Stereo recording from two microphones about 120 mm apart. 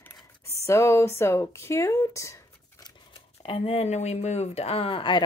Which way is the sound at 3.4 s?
55° left (ahead or behind).